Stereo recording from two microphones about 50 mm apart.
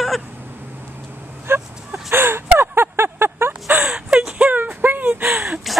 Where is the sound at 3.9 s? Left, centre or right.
Centre.